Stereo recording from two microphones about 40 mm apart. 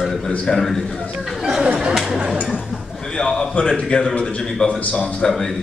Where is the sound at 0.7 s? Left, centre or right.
Centre.